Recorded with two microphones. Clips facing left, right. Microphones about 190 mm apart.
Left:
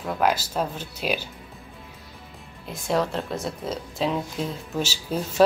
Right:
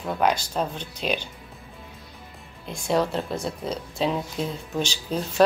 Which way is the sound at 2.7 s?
Centre (ahead or behind).